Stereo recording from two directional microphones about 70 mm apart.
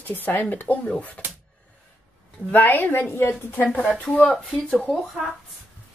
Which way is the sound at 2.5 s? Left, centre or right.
Left.